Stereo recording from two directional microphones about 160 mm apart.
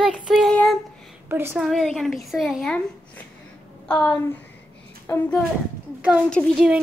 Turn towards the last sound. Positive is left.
turn(degrees=-5)  # may be behind; listen again after turning